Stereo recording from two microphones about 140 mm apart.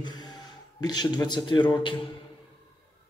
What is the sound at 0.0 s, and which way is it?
Music, 30° left (ahead or behind).